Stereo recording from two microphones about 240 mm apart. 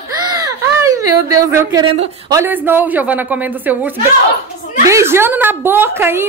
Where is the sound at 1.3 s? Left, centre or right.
Centre.